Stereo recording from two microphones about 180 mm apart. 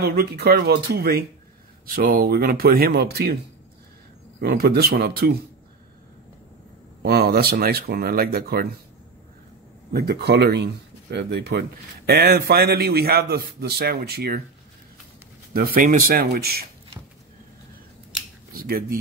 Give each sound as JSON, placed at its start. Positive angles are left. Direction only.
{"t": 0.0, "sound": "a man's voice", "side_deg": -60}
{"t": 4.4, "sound": "a man's voice", "side_deg": -60}
{"t": 7.0, "sound": "a man's voice", "side_deg": -60}
{"t": 9.9, "sound": "a man's voice", "side_deg": -65}
{"t": 15.5, "sound": "a man's voice", "side_deg": -55}
{"t": 18.5, "sound": "speech", "side_deg": -55}